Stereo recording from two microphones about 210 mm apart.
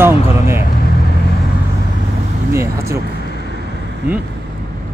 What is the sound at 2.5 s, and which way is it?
Speech, 15° right (ahead or behind).